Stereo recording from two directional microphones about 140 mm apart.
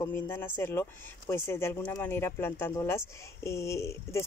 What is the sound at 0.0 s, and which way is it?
Speech, 15° left (ahead or behind).